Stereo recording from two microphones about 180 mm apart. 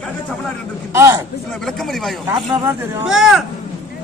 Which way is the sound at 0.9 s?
15° right (ahead or behind).